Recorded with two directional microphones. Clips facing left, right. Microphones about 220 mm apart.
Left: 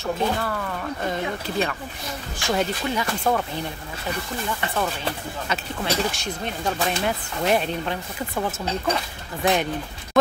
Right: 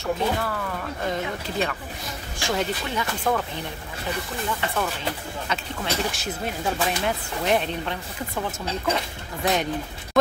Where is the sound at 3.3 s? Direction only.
30° left (ahead or behind).